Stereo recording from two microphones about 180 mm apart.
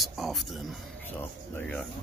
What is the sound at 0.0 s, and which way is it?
Speech, centre (ahead or behind).